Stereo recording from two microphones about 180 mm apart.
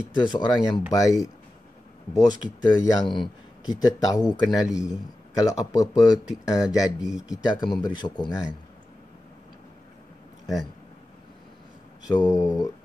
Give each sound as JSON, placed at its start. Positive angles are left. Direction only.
{"t": 0.1, "sound": "a man's voice", "side_deg": 25}
{"t": 2.1, "sound": "a man's voice", "side_deg": 20}
{"t": 12.1, "sound": "a man's voice", "side_deg": 20}